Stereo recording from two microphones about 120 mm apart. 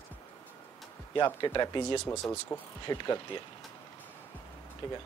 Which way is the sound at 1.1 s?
40° left (ahead or behind).